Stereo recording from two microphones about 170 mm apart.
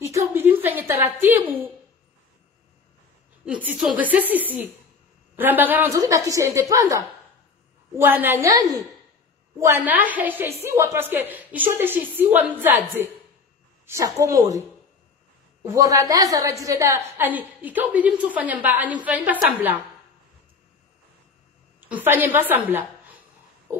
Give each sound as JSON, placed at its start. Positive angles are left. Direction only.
{"t": 0.0, "sound": "a sound", "side_deg": -15}
{"t": 3.4, "sound": "a woman's voice", "side_deg": -5}
{"t": 15.6, "sound": "a woman's voice", "side_deg": -20}
{"t": 21.7, "sound": "a woman's voice", "side_deg": -10}